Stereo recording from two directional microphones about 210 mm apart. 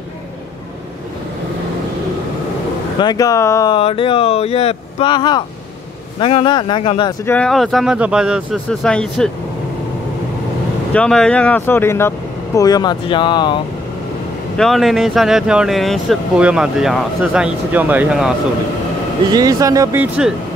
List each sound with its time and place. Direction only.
3.0 s speech: 20° left (ahead or behind)
7.2 s speech: 5° left (ahead or behind)
10.9 s speech: 5° left (ahead or behind); by 13.6 s 20° left (ahead or behind)
14.6 s speech: centre (ahead or behind)
19.3 s speech: 15° right (ahead or behind)